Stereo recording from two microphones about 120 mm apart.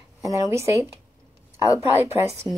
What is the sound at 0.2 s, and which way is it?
Speech, 25° right (ahead or behind).